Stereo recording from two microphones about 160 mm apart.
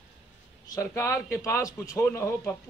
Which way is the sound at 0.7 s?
20° left (ahead or behind).